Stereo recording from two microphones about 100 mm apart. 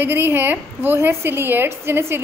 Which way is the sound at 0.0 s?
20° right (ahead or behind).